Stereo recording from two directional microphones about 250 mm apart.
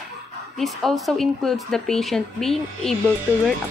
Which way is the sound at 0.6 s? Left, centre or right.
Centre.